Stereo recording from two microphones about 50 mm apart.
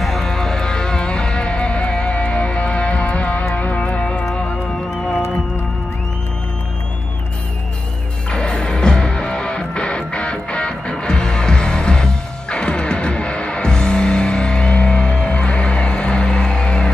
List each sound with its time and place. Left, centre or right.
0.0 s music: centre; by 4.3 s left
8.3 s music: centre